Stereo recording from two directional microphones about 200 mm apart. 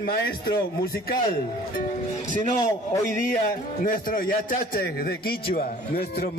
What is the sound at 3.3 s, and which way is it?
A man's voice, 45° left (ahead or behind).